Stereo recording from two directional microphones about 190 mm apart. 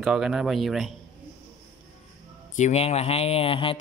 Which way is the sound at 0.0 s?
5° right (ahead or behind).